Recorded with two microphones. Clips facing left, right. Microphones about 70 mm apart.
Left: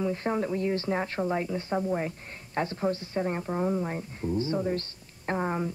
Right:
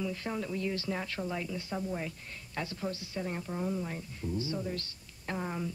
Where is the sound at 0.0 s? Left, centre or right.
Left.